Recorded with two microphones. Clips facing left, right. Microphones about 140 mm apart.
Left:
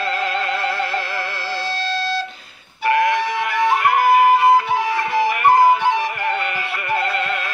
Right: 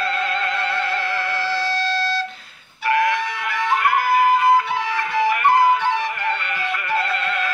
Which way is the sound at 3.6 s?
25° left (ahead or behind).